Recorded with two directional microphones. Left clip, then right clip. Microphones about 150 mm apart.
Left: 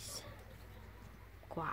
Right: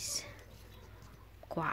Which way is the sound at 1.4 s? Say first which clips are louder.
Right 5 dB; 20° right (ahead or behind).